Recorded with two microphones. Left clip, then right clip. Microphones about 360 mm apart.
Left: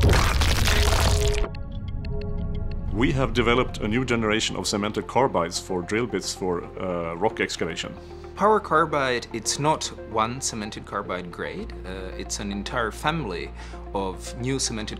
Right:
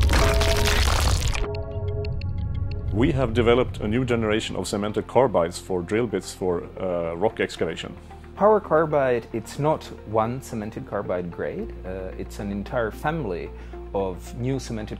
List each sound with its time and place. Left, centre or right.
0.0 s music: centre
3.0 s speech: right
8.4 s speech: right